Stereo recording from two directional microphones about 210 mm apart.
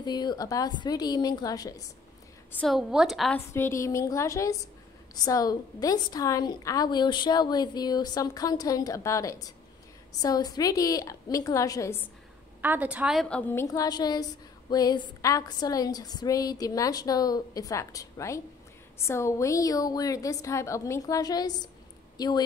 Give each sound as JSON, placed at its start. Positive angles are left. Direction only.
{"t": 0.0, "sound": "a woman's voice", "side_deg": 20}
{"t": 2.6, "sound": "a woman's voice", "side_deg": 0}
{"t": 3.5, "sound": "a woman's voice", "side_deg": 10}
{"t": 12.6, "sound": "a woman's voice", "side_deg": -5}